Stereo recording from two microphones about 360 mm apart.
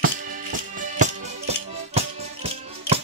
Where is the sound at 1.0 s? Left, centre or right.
Centre.